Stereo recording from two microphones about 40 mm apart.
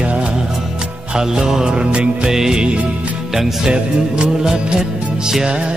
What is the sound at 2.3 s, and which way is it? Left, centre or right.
Music, centre.